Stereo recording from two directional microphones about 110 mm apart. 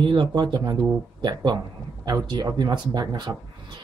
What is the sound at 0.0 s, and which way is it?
Speech, 45° right (ahead or behind).